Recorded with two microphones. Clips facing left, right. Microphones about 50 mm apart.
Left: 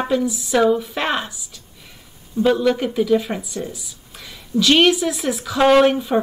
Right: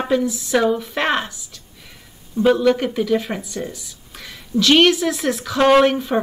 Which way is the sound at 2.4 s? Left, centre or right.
Centre.